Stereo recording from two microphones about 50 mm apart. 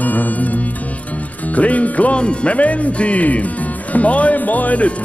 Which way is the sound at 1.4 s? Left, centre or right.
Left.